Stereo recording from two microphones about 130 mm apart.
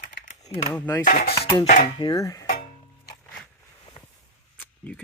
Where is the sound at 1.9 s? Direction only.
30° left (ahead or behind).